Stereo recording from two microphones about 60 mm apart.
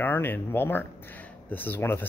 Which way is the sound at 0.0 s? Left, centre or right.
Left.